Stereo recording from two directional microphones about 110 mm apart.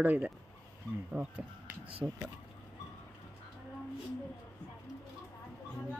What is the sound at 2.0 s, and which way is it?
Speech, centre (ahead or behind).